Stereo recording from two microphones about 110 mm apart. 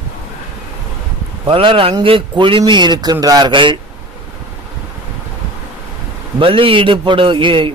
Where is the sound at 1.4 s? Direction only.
50° right (ahead or behind).